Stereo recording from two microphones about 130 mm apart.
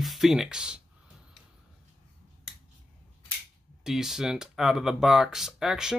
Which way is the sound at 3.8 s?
5° right (ahead or behind).